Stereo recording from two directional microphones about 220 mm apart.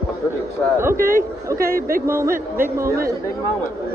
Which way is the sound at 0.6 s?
5° left (ahead or behind).